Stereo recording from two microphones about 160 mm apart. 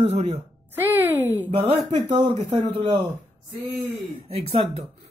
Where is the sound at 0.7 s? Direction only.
10° right (ahead or behind).